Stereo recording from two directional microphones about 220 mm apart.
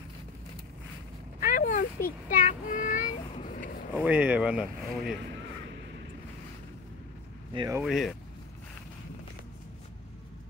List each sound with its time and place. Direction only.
1.4 s a sound: 35° left (ahead or behind)
2.0 s child singing: 35° left (ahead or behind)
3.9 s speech: 5° right (ahead or behind)
7.5 s speech: 15° right (ahead or behind)
7.8 s speech: centre (ahead or behind)